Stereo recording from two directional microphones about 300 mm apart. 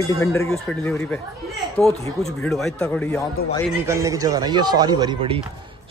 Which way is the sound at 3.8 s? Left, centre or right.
Centre.